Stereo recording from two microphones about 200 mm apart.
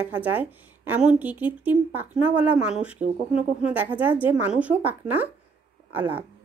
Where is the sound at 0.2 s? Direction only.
10° right (ahead or behind).